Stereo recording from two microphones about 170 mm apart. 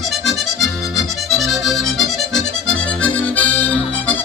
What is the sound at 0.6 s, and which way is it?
Accordion, centre (ahead or behind).